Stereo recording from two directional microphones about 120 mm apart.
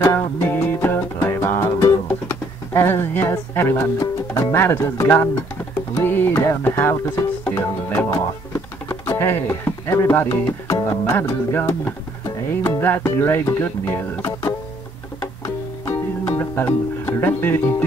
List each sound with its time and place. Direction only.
0.0 s music: 20° left (ahead or behind)
2.2 s speech: 20° left (ahead or behind)
5.9 s music: 15° left (ahead or behind)
8.5 s speech: 20° left (ahead or behind)
16.3 s speech: 15° left (ahead or behind)